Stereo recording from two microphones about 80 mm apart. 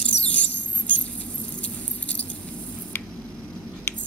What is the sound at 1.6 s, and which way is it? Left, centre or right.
Keys jangling, centre.